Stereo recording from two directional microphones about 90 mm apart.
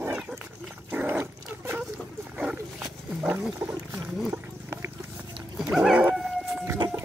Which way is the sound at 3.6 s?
40° right (ahead or behind).